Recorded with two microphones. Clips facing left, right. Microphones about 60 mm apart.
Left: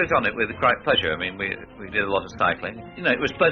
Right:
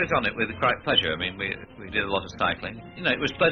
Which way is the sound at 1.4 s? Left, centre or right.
Centre.